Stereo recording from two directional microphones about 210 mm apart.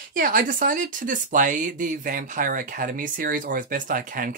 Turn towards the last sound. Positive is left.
turn(degrees=-40)  # may be behind; listen again after turning